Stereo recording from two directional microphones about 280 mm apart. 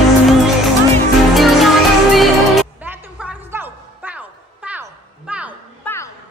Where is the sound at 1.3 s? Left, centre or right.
Centre.